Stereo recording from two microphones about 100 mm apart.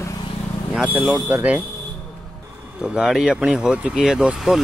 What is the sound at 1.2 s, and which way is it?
Speech, 15° right (ahead or behind).